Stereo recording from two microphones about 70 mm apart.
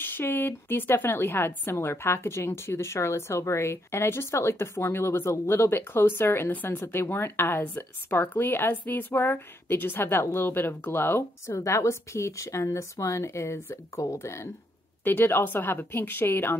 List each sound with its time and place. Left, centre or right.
0.0 s a woman's voice: left
15.0 s a woman's voice: left